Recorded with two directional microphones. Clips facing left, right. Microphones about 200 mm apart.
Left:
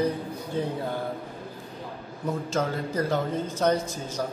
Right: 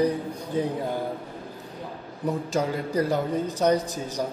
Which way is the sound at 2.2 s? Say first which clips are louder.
Right 2 dB; 15° right (ahead or behind).